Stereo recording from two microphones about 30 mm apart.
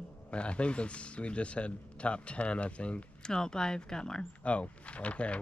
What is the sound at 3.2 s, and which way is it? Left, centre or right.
Speech, left.